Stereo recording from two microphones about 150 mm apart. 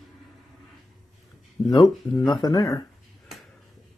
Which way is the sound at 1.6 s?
30° left (ahead or behind).